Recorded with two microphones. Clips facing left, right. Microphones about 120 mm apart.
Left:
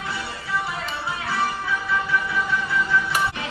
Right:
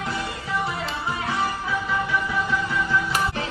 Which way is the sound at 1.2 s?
15° right (ahead or behind).